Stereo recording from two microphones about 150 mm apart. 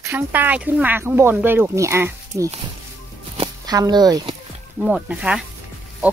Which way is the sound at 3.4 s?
25° right (ahead or behind).